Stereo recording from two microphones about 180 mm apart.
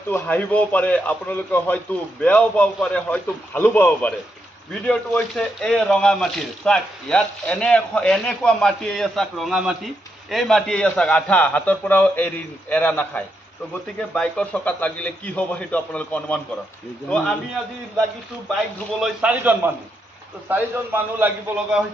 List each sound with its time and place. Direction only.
0.1 s a man's voice: 10° left (ahead or behind)
18.5 s a man's voice: 5° right (ahead or behind)